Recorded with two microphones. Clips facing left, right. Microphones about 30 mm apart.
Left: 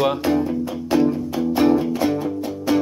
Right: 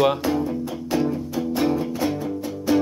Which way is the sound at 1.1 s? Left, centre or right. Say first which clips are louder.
Left 4 dB; centre.